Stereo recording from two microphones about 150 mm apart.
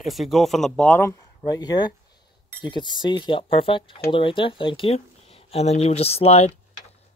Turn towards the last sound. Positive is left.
turn(degrees=45)  # may be behind; listen again after turning